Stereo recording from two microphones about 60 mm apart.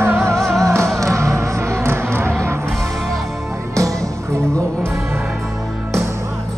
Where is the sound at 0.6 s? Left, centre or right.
Right.